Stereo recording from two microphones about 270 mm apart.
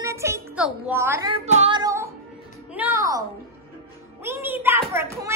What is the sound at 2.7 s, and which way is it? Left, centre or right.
Music, centre.